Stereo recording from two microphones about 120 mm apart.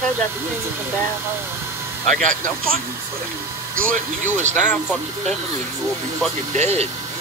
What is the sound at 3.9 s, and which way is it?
Speech, 85° right.